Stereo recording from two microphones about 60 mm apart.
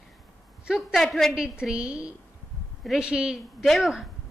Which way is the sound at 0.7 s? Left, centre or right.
Centre.